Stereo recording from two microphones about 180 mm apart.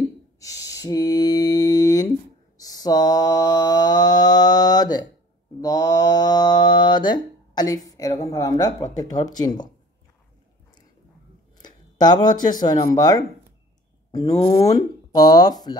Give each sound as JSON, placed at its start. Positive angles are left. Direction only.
{"t": 0.4, "sound": "mantra", "side_deg": 20}
{"t": 7.9, "sound": "a sound", "side_deg": 20}
{"t": 8.9, "sound": "speech", "side_deg": 20}
{"t": 11.5, "sound": "speech", "side_deg": 25}
{"t": 14.4, "sound": "speech", "side_deg": 20}